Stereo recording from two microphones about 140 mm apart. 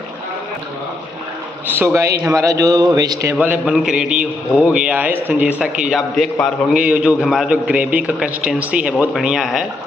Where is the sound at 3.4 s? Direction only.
5° right (ahead or behind).